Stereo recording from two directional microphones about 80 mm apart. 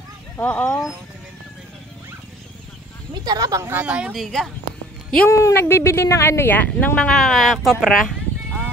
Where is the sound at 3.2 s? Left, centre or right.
Right.